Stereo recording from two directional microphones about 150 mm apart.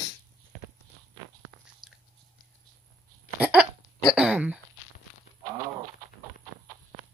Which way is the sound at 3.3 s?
10° right (ahead or behind).